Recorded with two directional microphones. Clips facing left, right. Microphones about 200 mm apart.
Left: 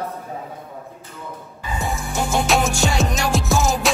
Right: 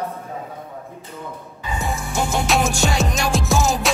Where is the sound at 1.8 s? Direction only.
Centre (ahead or behind).